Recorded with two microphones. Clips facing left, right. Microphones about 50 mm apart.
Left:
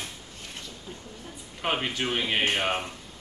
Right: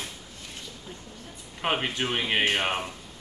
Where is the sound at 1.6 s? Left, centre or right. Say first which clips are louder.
Right 1 dB; centre.